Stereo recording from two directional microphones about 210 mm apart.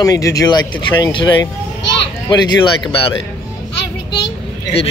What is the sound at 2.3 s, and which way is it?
Speech, 20° left (ahead or behind).